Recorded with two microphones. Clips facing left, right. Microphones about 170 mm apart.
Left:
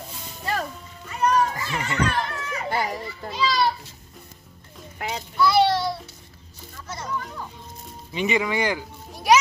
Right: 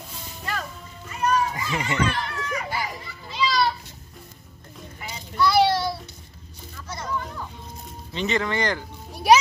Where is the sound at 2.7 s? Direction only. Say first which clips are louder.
Left 5 dB; 55° left (ahead or behind).